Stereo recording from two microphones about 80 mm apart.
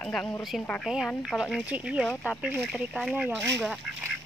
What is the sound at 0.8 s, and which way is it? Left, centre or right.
Speech, centre.